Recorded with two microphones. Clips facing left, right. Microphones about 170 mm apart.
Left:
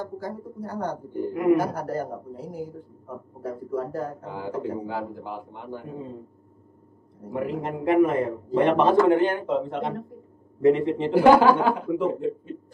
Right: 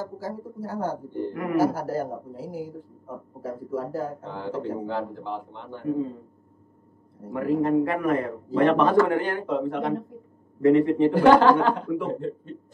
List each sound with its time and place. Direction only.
0.0 s a man's voice: 5° right (ahead or behind)
1.3 s speech: 20° left (ahead or behind)
1.6 s a man's voice: 5° right (ahead or behind)
4.2 s speech: 10° left (ahead or behind)
7.3 s speech: 20° left (ahead or behind)
11.1 s speech: 10° left (ahead or behind)